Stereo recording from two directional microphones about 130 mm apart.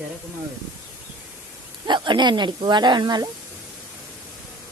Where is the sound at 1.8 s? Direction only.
35° right (ahead or behind).